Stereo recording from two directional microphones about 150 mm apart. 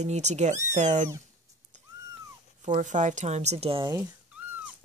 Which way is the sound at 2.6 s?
55° right (ahead or behind).